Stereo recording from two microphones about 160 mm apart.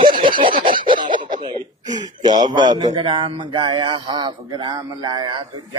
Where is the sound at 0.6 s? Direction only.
60° right (ahead or behind).